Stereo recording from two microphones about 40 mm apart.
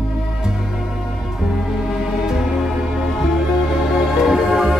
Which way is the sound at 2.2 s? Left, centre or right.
Centre.